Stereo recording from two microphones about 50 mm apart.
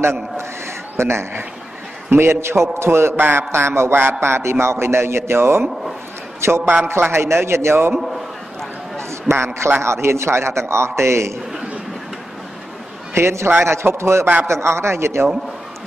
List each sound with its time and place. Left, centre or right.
0.0 s a man's voice: right
9.3 s a man's voice: right
13.1 s a man's voice: right
13.5 s a man's voice: right